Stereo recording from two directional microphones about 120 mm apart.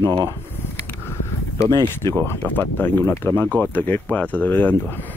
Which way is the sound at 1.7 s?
35° right (ahead or behind).